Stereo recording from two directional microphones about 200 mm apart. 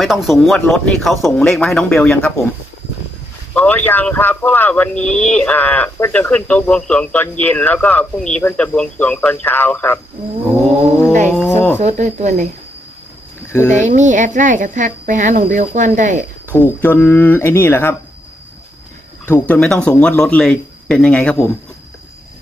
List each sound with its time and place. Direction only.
0.0 s speech: centre (ahead or behind)
3.5 s speech: 10° left (ahead or behind)
11.2 s speech: 5° left (ahead or behind)
11.8 s speech: 35° right (ahead or behind)
13.5 s speech: 10° left (ahead or behind)
13.7 s speech: 40° right (ahead or behind)
16.5 s speech: 10° left (ahead or behind)
19.2 s speech: 10° left (ahead or behind)